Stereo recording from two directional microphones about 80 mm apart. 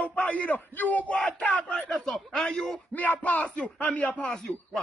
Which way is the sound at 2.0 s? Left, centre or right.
Centre.